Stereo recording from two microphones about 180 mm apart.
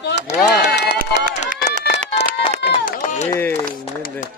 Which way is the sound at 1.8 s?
35° left (ahead or behind).